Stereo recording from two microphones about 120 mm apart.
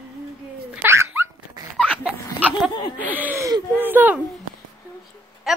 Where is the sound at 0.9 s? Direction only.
20° right (ahead or behind).